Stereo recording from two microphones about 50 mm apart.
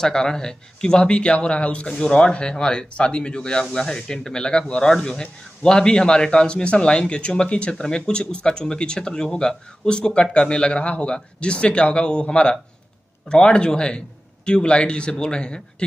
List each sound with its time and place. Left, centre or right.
0.0 s speech: centre